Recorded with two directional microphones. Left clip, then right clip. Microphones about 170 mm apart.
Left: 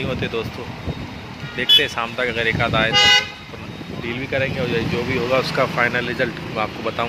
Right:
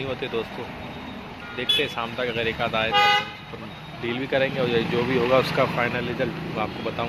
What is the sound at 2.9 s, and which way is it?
Speech, 45° right (ahead or behind).